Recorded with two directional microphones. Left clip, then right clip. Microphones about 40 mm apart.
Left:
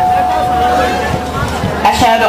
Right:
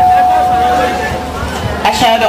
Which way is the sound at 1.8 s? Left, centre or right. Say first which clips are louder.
Even; centre.